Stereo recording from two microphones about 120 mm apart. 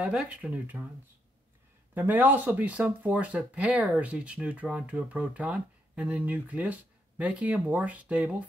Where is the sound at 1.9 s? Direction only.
15° right (ahead or behind).